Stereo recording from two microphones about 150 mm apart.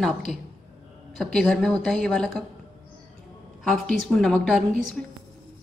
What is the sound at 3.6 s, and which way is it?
A woman's voice, centre (ahead or behind).